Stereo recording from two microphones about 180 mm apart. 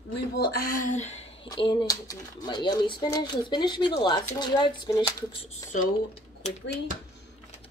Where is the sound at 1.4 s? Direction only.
25° left (ahead or behind).